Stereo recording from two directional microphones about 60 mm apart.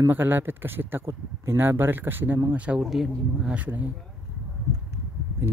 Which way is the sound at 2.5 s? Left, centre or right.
Right.